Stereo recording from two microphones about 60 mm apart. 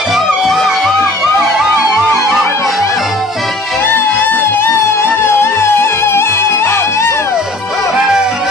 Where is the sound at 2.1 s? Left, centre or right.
Left.